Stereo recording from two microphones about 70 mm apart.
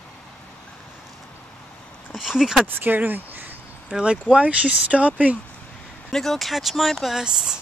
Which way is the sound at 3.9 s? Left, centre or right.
Centre.